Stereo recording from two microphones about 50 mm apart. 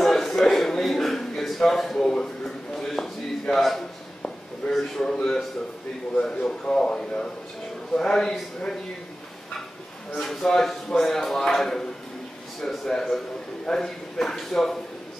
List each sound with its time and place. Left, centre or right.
0.0 s a sound: centre
6.2 s speech: centre
10.2 s speech: centre